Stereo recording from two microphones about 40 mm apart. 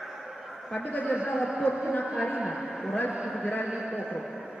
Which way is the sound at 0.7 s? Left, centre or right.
Left.